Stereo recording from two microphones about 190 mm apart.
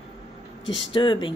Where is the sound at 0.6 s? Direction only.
75° left (ahead or behind).